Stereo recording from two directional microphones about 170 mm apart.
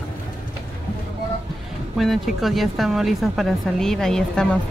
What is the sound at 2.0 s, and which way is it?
A woman's voice, centre (ahead or behind).